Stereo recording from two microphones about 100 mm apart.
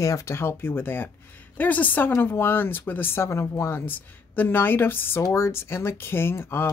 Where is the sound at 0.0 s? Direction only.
30° left (ahead or behind).